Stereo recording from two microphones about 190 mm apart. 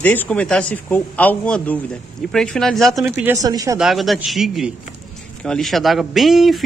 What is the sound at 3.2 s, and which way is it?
Speech, 20° right (ahead or behind).